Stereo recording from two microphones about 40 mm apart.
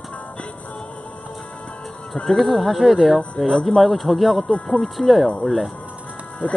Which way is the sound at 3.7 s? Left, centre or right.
Centre.